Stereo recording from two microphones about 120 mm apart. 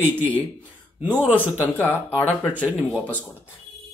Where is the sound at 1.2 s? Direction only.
15° left (ahead or behind).